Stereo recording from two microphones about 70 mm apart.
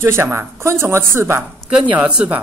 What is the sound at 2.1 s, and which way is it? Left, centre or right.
Speech, centre.